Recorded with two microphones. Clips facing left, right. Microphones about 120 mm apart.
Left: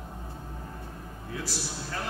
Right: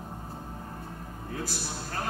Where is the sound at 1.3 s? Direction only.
50° right (ahead or behind).